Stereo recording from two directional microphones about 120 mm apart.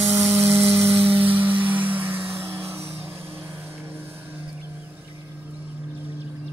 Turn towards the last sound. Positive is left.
turn(degrees=-15)  # may be behind; listen again after turning